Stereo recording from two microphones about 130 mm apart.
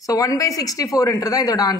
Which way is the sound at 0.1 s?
25° left (ahead or behind).